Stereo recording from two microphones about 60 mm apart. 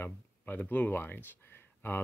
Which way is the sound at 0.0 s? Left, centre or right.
Left.